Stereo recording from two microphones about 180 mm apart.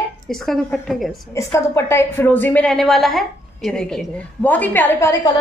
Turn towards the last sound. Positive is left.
turn(degrees=15)  # may be behind; listen again after turning